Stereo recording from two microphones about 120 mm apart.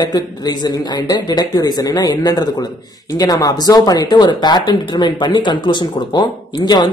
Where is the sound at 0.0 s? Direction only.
35° left (ahead or behind).